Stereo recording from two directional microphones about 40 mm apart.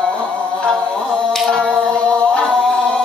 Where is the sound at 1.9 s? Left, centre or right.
Left.